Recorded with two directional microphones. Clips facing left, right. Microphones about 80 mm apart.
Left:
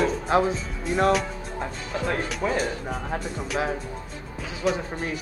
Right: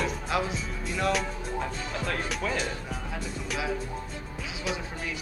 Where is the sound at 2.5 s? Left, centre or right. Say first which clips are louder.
Left 5 dB; left.